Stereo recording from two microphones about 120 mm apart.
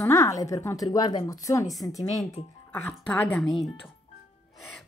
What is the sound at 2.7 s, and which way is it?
Speech, 15° left (ahead or behind).